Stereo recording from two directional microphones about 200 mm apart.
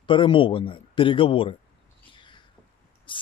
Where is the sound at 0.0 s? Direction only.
25° left (ahead or behind).